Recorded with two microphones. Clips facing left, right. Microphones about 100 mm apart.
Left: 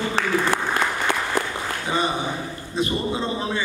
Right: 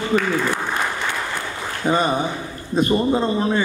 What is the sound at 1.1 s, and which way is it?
Applause, 90° left.